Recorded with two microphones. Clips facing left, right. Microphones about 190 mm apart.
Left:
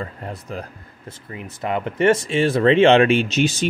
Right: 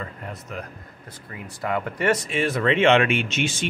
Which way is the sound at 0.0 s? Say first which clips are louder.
Left 4 dB; 30° left (ahead or behind).